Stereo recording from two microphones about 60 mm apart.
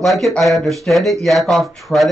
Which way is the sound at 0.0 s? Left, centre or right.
Centre.